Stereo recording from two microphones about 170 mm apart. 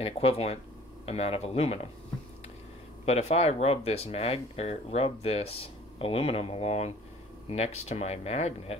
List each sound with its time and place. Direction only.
0.0 s speech: 35° left (ahead or behind)
3.1 s speech: 40° left (ahead or behind)